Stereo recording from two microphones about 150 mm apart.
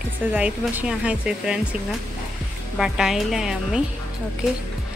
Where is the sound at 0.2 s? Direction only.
10° right (ahead or behind).